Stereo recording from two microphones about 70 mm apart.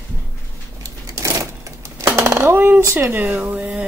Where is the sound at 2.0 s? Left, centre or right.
Right.